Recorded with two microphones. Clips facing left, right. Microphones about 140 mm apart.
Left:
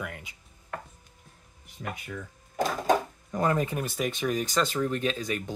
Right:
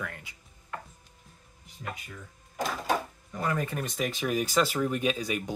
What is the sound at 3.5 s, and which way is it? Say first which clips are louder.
Speech: left 4 dB; 20° left (ahead or behind).